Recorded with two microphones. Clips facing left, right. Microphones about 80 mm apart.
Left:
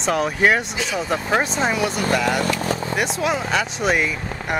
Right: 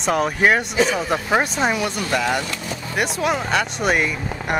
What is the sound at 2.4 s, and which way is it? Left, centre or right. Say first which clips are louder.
Speech: left 7 dB; left.